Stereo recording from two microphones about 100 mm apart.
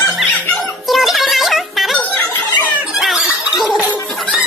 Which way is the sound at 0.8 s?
Centre (ahead or behind).